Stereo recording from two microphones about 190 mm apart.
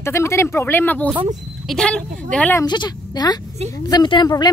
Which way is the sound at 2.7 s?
20° left (ahead or behind).